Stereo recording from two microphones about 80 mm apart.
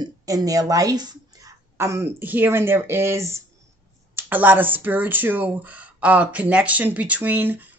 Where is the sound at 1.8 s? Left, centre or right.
Right.